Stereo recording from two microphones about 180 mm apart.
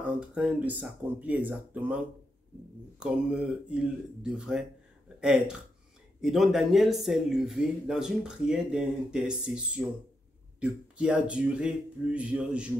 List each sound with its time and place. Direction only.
0.0 s speech: 10° right (ahead or behind)
3.0 s speech: 5° right (ahead or behind)